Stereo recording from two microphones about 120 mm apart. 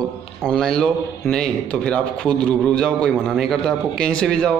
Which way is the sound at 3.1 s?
5° right (ahead or behind).